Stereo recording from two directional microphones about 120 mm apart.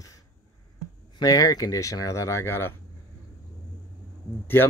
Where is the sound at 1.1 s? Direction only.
30° left (ahead or behind).